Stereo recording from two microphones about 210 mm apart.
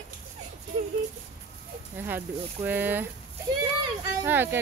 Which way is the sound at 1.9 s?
10° right (ahead or behind).